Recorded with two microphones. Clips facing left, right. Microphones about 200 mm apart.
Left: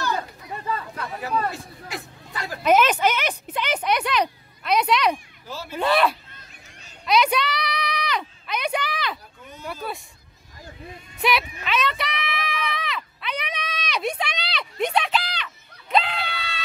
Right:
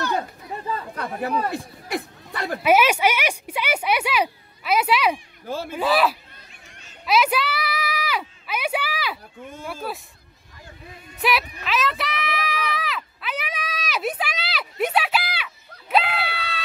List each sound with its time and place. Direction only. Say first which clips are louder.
0.9 s speech: right 5 dB; 50° right (ahead or behind)
2.6 s speech: even; 10° right (ahead or behind)
7.1 s a sound: even; 5° right (ahead or behind)
9.8 s speech: right 1 dB; centre (ahead or behind)
11.1 s speech: even; centre (ahead or behind)
11.6 s a sound: even; centre (ahead or behind)